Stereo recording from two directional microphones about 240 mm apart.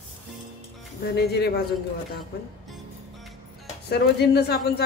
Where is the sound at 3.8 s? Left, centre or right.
Left.